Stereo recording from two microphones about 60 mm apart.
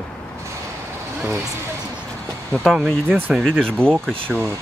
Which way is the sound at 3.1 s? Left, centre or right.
Right.